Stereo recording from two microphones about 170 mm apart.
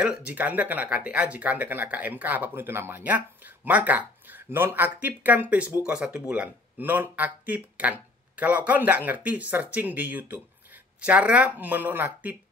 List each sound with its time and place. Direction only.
0.0 s speech: 5° right (ahead or behind)